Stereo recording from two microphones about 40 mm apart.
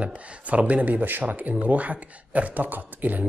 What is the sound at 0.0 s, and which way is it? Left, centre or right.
Speech, right.